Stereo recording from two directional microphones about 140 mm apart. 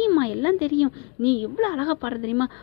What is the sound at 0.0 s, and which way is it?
Speech, 25° left (ahead or behind).